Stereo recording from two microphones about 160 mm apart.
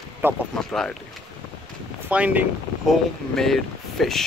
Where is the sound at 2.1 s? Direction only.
10° right (ahead or behind).